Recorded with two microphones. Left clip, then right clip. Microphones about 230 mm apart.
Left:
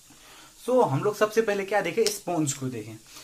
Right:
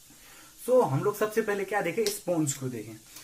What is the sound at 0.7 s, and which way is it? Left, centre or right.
Speech, centre.